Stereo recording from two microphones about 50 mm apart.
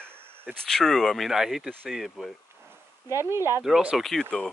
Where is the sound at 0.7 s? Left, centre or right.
Centre.